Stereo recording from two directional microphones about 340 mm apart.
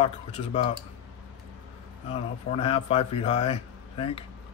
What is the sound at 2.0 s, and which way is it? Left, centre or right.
Speech, centre.